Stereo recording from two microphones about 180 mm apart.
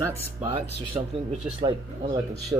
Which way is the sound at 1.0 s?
25° right (ahead or behind).